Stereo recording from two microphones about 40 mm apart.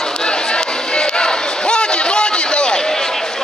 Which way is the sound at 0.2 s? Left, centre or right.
Left.